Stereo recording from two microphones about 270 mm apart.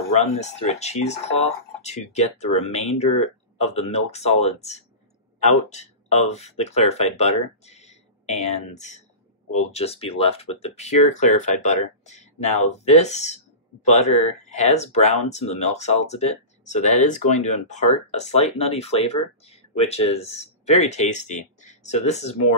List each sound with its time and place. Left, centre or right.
0.4 s speech: left